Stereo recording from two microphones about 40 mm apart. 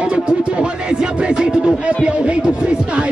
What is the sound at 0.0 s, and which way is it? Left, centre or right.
Music, right.